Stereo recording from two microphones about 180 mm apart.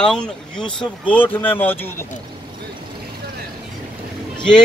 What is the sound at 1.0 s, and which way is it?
Speech, 10° left (ahead or behind).